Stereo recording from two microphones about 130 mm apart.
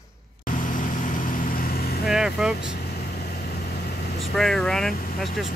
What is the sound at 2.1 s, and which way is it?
Speech, 5° right (ahead or behind).